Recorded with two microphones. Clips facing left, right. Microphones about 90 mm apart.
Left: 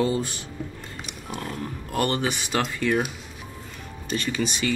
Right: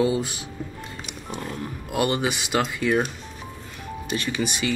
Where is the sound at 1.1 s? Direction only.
Centre (ahead or behind).